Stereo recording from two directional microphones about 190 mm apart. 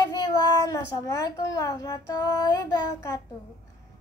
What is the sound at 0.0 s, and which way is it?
A child's voice, 20° left (ahead or behind).